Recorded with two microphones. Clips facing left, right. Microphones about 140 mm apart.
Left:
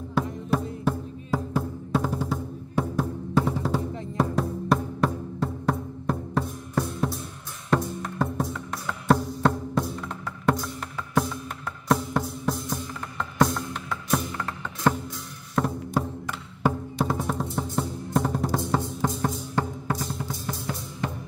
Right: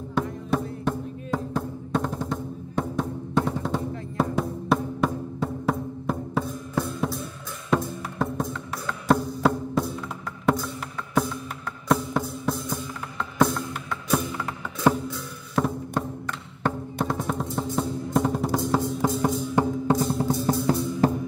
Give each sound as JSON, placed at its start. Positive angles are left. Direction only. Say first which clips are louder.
{"t": 0.2, "sound": "music", "louder": "even", "side_deg": 5}
{"t": 0.8, "sound": "drum", "louder": "even", "side_deg": 5}
{"t": 4.2, "sound": "music", "louder": "even", "side_deg": 0}
{"t": 11.9, "sound": "music", "louder": "right 1 dB", "side_deg": 0}
{"t": 19.9, "sound": "music", "louder": "right 8 dB", "side_deg": -30}